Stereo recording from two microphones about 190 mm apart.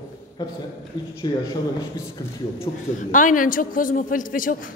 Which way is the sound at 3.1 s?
45° left (ahead or behind).